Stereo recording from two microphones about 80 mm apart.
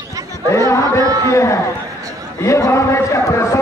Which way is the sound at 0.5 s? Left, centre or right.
Left.